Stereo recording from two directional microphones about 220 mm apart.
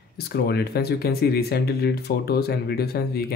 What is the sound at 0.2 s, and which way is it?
Speech, 45° left (ahead or behind).